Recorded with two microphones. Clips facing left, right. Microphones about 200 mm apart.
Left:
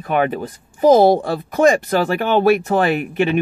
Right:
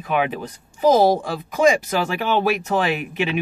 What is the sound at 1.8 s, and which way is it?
Speech, 45° left (ahead or behind).